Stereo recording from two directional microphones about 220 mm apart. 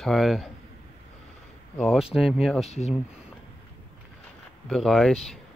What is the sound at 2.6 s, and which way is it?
Speech, 30° left (ahead or behind).